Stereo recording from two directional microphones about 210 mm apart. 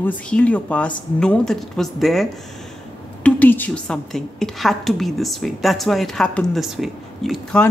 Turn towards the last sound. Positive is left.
turn(degrees=5)  # may be behind; listen again after turning